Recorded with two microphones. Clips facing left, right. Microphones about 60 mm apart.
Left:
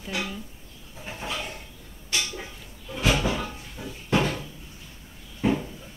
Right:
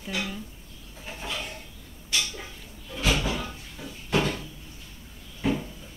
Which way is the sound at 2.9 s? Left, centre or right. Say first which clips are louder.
Left 2 dB; centre.